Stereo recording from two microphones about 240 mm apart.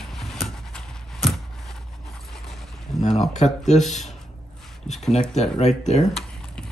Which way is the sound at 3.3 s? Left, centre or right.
Left.